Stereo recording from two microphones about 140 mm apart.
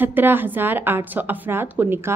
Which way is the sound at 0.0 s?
15° right (ahead or behind).